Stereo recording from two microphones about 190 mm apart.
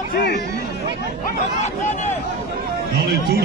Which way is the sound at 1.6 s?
35° left (ahead or behind).